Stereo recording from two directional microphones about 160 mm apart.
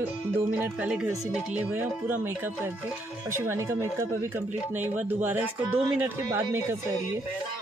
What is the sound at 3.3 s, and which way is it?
Music, 15° right (ahead or behind).